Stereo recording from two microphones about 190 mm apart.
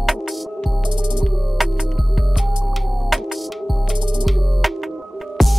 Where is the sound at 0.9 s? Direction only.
25° right (ahead or behind).